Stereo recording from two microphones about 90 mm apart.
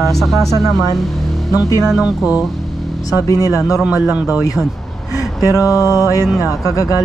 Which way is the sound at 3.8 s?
15° right (ahead or behind).